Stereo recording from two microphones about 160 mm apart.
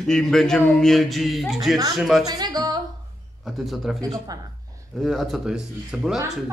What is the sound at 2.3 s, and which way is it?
Speech, 25° right (ahead or behind).